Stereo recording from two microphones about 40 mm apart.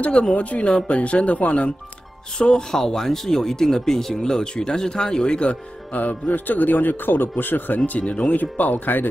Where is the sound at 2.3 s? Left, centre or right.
Left.